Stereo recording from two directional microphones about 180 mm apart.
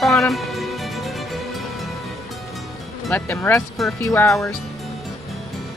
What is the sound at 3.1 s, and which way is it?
Speech, 10° left (ahead or behind).